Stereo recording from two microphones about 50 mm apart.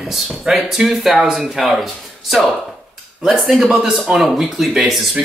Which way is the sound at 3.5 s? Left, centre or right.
Centre.